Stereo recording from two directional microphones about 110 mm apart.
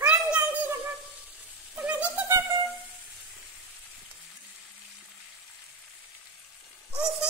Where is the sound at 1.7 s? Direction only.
15° right (ahead or behind).